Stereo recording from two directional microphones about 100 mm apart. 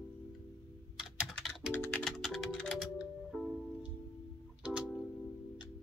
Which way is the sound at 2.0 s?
Centre (ahead or behind).